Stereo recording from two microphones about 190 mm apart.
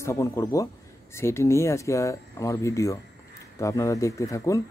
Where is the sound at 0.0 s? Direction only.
15° left (ahead or behind).